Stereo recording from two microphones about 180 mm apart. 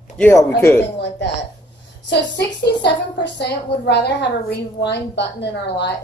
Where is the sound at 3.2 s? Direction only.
70° left (ahead or behind).